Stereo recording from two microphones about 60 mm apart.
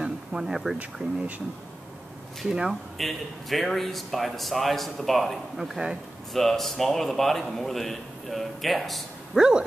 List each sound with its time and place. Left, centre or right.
0.0 s a sound: centre
1.0 s speech: centre
2.5 s speech: centre
3.0 s a man's voice: centre
9.4 s speech: centre